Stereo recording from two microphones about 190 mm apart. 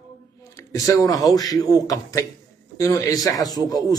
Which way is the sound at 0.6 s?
20° left (ahead or behind).